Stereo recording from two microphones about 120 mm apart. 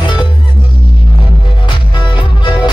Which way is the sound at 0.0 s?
40° left (ahead or behind).